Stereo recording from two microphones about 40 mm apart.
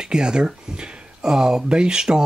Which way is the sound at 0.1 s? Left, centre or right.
Centre.